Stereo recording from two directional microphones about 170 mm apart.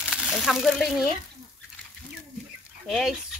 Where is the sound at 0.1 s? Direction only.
Centre (ahead or behind).